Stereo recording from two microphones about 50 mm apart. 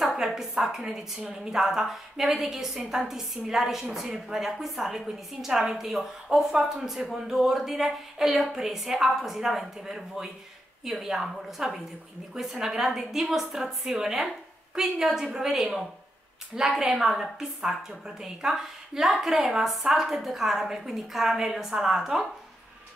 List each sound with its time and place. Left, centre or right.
0.0 s a woman's voice: centre
15.1 s a woman's voice: centre